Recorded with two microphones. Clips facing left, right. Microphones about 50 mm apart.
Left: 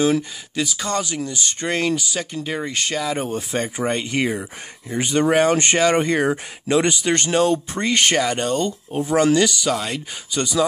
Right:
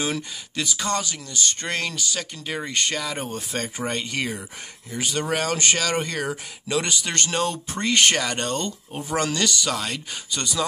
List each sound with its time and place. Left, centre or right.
0.0 s speech: centre
1.0 s speech: centre